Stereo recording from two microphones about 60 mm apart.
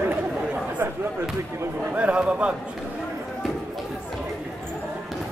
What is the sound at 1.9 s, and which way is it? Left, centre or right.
Speech, right.